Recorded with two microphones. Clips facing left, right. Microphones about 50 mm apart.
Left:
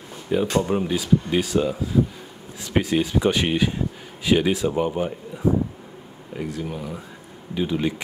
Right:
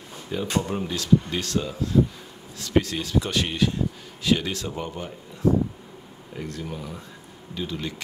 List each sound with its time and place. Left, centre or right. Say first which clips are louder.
0.3 s speech: left 6 dB; centre